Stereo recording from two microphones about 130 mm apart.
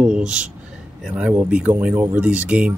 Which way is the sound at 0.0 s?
5° right (ahead or behind).